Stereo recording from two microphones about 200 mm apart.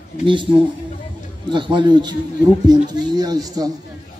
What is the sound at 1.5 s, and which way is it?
Speech, 25° right (ahead or behind).